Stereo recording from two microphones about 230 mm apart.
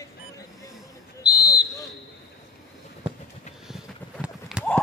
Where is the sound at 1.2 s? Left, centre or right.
Centre.